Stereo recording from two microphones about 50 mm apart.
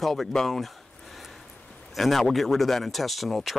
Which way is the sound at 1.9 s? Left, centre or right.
Centre.